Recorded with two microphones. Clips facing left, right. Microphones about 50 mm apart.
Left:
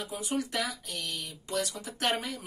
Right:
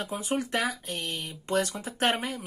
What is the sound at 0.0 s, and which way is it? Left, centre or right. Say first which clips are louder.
Speech: right 3 dB; right.